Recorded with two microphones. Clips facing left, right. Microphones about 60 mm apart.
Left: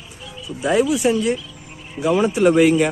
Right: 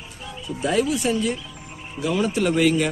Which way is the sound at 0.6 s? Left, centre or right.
Centre.